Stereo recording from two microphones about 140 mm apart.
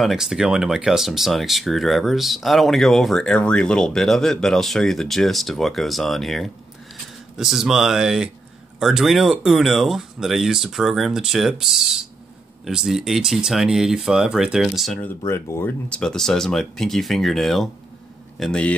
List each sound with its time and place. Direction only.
0.0 s speech: 5° right (ahead or behind)
15.0 s speech: 15° left (ahead or behind)
15.9 s speech: 5° left (ahead or behind)